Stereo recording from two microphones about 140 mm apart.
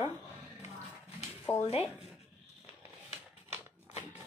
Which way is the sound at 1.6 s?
45° left (ahead or behind).